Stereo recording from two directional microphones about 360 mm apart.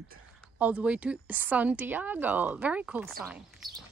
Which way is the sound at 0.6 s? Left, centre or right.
Centre.